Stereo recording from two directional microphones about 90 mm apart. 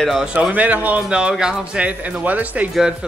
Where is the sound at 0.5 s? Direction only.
15° right (ahead or behind).